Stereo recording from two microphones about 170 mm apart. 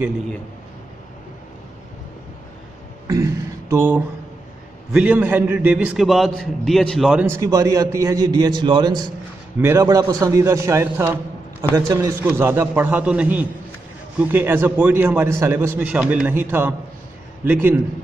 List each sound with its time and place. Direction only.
3.1 s a sound: 20° right (ahead or behind)
4.9 s a man's voice: 10° right (ahead or behind)
7.2 s a man's voice: 20° right (ahead or behind)
9.6 s a man's voice: 15° right (ahead or behind)